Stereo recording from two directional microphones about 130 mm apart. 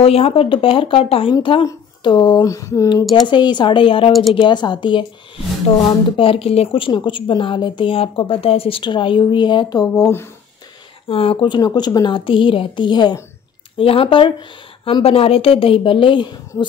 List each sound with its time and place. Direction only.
0.0 s a woman's voice: 50° left (ahead or behind); by 2.9 s 25° left (ahead or behind)
3.3 s a woman's voice: 35° left (ahead or behind)
4.1 s speech: centre (ahead or behind)
4.4 s a woman's voice: 35° left (ahead or behind)
6.1 s a woman's voice: 45° left (ahead or behind); by 10.3 s 20° left (ahead or behind)
11.1 s a woman's voice: 45° left (ahead or behind)